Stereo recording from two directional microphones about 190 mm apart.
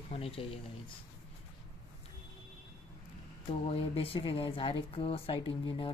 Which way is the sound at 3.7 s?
30° left (ahead or behind).